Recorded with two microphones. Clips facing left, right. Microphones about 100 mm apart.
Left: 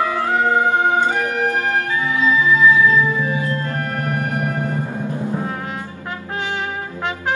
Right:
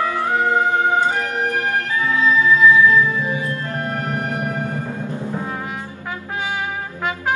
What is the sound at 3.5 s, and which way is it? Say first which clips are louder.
Music: left 1 dB; 20° right (ahead or behind).